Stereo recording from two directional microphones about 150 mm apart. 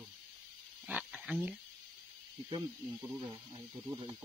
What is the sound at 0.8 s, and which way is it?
Pig, 10° right (ahead or behind).